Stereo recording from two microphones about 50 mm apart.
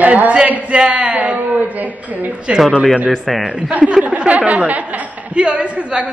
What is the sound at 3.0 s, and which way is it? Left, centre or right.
Speech, centre.